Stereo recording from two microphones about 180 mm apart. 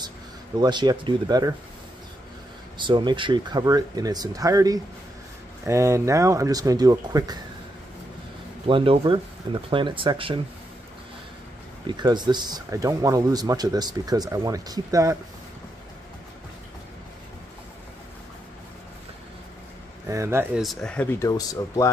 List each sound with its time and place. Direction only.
0.6 s speech: 25° right (ahead or behind)
2.8 s speech: 25° right (ahead or behind)
8.6 s speech: 30° right (ahead or behind)
12.0 s speech: 25° right (ahead or behind)
20.1 s speech: 15° right (ahead or behind)
20.5 s speech: centre (ahead or behind); by 21.8 s 20° left (ahead or behind)